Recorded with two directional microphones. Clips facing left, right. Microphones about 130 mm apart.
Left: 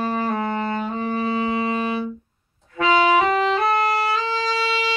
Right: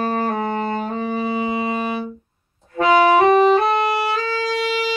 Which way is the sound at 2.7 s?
45° right (ahead or behind).